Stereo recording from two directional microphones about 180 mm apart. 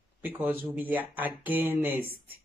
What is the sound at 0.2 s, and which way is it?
Speech, 10° right (ahead or behind).